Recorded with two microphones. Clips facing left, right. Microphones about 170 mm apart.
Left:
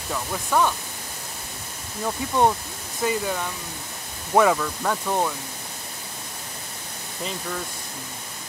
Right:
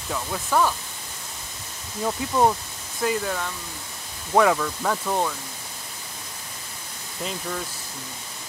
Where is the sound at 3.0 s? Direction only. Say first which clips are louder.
Even; centre (ahead or behind).